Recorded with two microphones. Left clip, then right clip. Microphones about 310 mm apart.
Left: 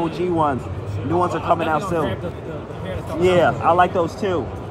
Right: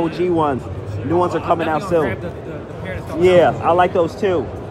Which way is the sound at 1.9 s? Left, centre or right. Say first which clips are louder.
Right 5 dB; centre.